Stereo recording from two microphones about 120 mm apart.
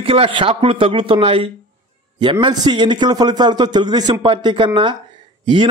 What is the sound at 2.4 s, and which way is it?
A man's voice, 35° right (ahead or behind).